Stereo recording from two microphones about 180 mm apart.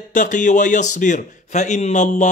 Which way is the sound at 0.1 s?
45° left (ahead or behind).